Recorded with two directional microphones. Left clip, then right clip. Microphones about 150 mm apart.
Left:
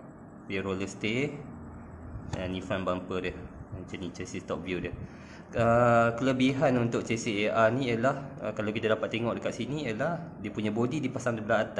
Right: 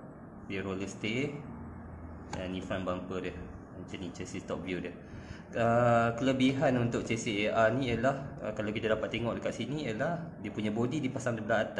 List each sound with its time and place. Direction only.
0.5 s speech: 30° left (ahead or behind)
2.4 s speech: 30° left (ahead or behind)